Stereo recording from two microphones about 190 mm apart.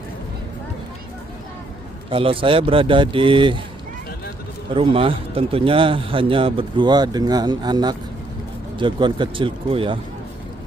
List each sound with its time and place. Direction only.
2.0 s a man's voice: 30° right (ahead or behind)
4.7 s a man's voice: 30° right (ahead or behind)